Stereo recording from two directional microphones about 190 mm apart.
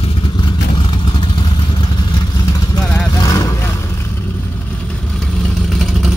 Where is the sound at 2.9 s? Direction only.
20° left (ahead or behind).